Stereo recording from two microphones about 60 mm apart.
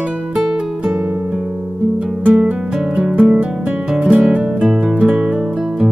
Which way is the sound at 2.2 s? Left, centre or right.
Right.